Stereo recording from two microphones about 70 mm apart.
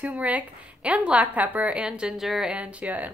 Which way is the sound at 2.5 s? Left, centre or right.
Centre.